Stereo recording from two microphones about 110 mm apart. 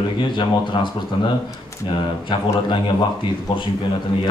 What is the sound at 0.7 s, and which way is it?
Speech, 50° left (ahead or behind).